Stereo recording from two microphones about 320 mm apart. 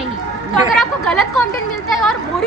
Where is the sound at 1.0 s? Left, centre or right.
Centre.